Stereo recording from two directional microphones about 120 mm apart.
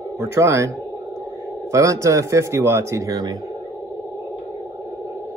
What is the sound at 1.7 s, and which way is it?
Speech, 25° right (ahead or behind).